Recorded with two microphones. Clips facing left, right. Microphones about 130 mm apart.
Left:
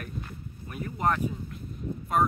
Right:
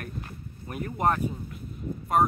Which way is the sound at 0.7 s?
35° right (ahead or behind).